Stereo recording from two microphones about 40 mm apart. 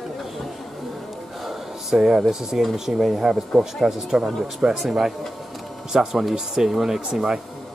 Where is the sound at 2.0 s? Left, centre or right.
Centre.